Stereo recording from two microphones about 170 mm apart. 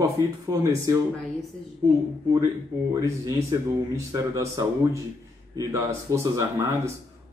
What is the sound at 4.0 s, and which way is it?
Speech, 20° right (ahead or behind).